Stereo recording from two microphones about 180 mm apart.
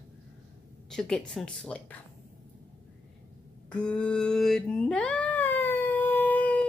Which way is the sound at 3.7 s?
5° left (ahead or behind).